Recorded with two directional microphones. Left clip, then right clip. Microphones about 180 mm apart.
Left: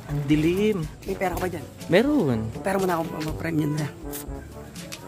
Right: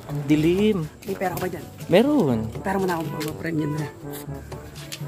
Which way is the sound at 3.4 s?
40° left (ahead or behind).